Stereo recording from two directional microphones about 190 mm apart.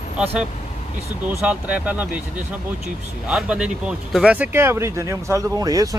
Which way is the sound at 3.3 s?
5° right (ahead or behind).